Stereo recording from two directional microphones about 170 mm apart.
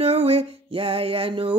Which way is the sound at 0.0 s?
35° right (ahead or behind).